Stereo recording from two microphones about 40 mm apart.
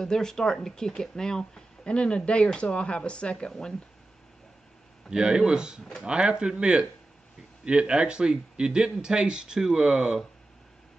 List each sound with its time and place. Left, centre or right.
0.0 s speech: centre
5.1 s a man's voice: centre